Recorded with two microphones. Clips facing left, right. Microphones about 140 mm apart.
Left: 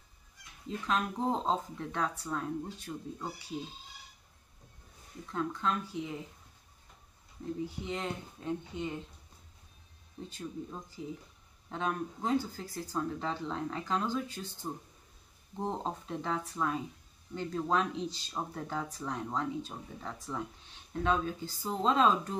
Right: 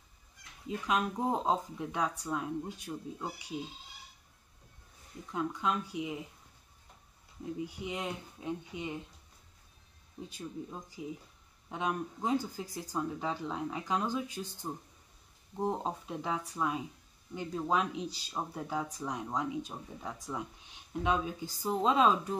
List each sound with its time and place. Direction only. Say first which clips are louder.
0.7 s speech: right 1 dB; 10° right (ahead or behind)
5.3 s speech: even; 10° right (ahead or behind)
7.6 s speech: left 1 dB; 10° right (ahead or behind)
10.3 s speech: left 1 dB; 10° right (ahead or behind)